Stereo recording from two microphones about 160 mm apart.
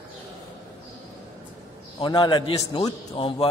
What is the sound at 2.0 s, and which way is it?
A man's voice, 30° left (ahead or behind).